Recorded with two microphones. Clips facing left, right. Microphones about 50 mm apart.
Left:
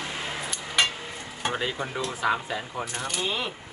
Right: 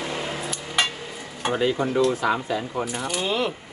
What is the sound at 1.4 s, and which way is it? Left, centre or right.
Speech, centre.